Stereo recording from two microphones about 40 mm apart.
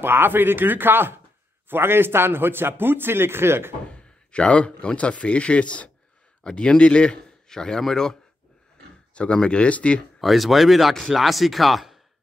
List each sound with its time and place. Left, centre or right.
0.0 s a man's voice: right
3.9 s a man's voice: left
9.1 s speech: left
10.2 s speech: centre